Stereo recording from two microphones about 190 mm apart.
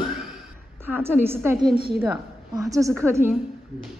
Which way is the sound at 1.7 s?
55° right (ahead or behind).